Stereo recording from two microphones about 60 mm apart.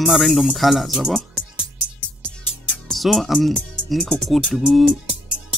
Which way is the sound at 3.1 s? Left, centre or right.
Centre.